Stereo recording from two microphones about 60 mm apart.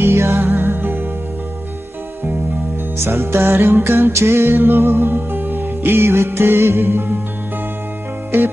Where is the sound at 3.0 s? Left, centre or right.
Right.